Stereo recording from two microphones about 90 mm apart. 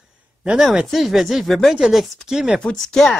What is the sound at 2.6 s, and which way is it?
Speech, 5° left (ahead or behind).